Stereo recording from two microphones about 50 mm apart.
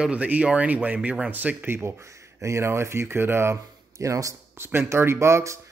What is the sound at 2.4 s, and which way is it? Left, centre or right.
A man's voice, right.